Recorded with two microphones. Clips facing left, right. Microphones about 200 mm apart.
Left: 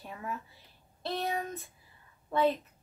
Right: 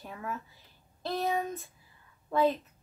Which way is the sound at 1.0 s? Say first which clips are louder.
Right 3 dB; centre (ahead or behind).